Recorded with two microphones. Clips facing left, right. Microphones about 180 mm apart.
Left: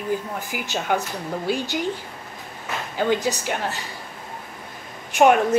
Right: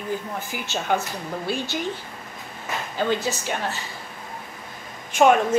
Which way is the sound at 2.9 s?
15° left (ahead or behind).